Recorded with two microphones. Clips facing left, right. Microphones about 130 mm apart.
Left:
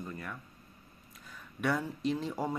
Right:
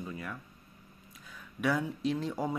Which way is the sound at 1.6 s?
Centre (ahead or behind).